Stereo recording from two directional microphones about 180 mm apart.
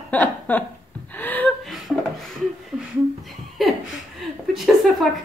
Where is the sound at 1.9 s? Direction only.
5° right (ahead or behind).